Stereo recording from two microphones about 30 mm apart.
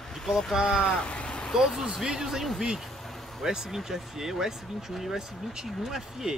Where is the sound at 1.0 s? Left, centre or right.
Left.